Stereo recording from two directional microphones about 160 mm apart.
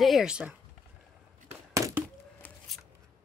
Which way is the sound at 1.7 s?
20° right (ahead or behind).